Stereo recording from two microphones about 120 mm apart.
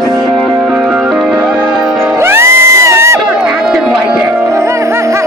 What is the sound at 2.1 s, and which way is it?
Music, 20° right (ahead or behind).